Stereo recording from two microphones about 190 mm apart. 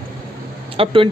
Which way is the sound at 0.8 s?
30° right (ahead or behind).